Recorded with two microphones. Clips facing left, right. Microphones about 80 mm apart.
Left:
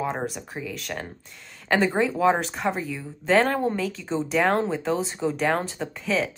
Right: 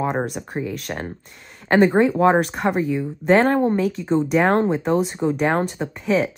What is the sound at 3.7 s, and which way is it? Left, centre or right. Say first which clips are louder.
Speech: right 7 dB; right.